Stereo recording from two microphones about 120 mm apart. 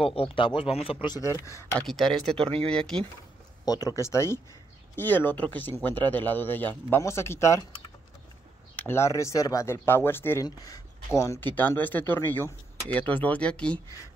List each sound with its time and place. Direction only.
0.0 s speech: 50° left (ahead or behind)
1.1 s speech: 25° left (ahead or behind)
1.8 s speech: 5° left (ahead or behind)
3.6 s a man's voice: 30° left (ahead or behind)
8.7 s speech: 20° left (ahead or behind)
10.4 s a man's voice: 30° left (ahead or behind); by 13.7 s 10° left (ahead or behind)